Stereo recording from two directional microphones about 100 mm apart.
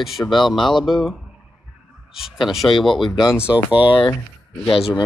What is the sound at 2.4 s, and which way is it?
Speech, centre (ahead or behind).